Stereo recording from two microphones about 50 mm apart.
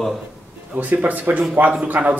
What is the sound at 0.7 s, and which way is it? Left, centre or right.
Speech, right.